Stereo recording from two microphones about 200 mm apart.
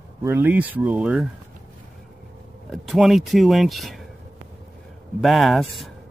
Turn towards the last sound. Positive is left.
turn(degrees=0)  # may be behind; listen again after turning